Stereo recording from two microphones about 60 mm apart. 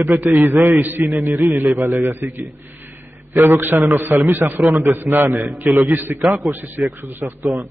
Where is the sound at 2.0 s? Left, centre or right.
Right.